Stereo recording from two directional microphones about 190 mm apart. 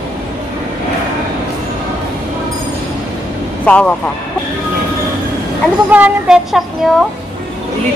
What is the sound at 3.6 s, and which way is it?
Speech, 5° left (ahead or behind).